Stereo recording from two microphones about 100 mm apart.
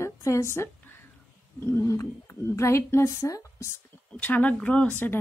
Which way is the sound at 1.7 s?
25° left (ahead or behind).